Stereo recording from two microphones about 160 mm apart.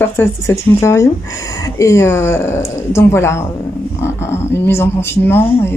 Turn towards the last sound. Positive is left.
turn(degrees=15)  # may be behind; listen again after turning